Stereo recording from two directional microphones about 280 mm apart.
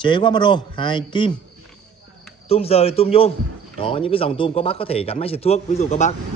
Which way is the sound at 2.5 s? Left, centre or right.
Left.